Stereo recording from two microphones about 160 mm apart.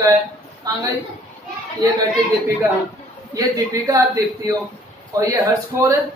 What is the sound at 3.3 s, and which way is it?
A woman's voice, 20° right (ahead or behind).